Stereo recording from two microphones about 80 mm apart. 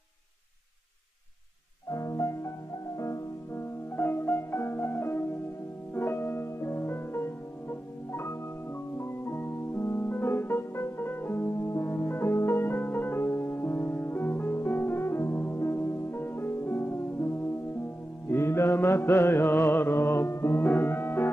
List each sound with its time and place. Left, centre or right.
1.9 s music: left
3.9 s music: left
18.3 s mantra: left
19.4 s music: left